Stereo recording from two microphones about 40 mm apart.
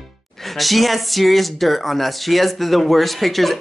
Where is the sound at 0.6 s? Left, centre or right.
Centre.